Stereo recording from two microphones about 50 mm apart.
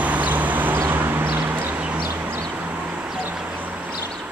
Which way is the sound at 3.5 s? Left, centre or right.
Right.